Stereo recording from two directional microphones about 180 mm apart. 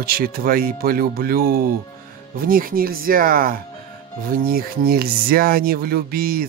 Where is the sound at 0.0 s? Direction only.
55° right (ahead or behind).